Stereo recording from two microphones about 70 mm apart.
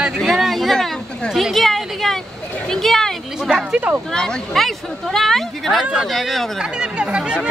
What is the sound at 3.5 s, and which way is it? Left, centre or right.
Speech, centre.